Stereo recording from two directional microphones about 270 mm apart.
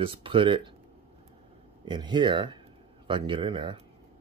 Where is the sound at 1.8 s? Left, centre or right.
Centre.